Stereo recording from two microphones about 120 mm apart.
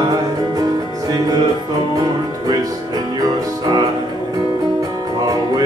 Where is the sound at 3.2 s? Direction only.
35° right (ahead or behind).